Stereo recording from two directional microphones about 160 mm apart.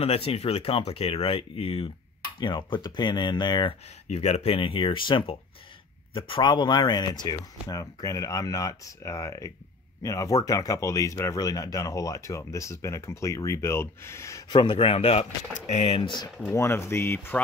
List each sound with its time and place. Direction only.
0.0 s speech: 40° left (ahead or behind)
4.1 s speech: 45° left (ahead or behind); by 14.6 s 20° left (ahead or behind)
14.6 s speech: 35° left (ahead or behind)
16.5 s speech: 15° left (ahead or behind)